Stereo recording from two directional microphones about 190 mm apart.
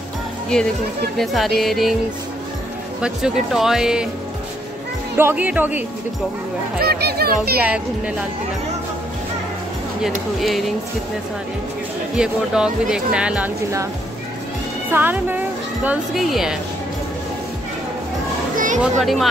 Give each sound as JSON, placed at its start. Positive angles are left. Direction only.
{"t": 1.1, "sound": "speech", "side_deg": 0}
{"t": 3.0, "sound": "speech", "side_deg": 0}
{"t": 5.1, "sound": "a woman's voice", "side_deg": -10}
{"t": 6.8, "sound": "speech", "side_deg": -55}
{"t": 10.4, "sound": "speech", "side_deg": 0}
{"t": 12.2, "sound": "speech", "side_deg": -5}
{"t": 14.9, "sound": "a woman's voice", "side_deg": -10}
{"t": 18.8, "sound": "speech", "side_deg": 0}